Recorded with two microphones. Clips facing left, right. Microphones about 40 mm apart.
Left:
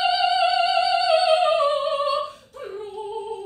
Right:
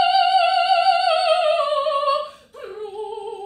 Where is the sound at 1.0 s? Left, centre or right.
Right.